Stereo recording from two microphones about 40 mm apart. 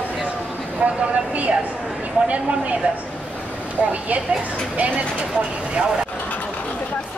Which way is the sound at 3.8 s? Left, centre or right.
Right.